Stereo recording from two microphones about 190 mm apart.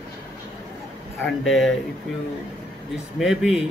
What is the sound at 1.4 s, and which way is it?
Speech, centre (ahead or behind).